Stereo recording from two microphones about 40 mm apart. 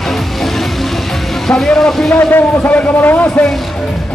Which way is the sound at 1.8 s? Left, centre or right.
Centre.